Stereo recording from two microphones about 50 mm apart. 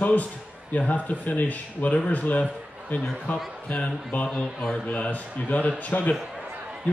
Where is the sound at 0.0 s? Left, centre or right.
Left.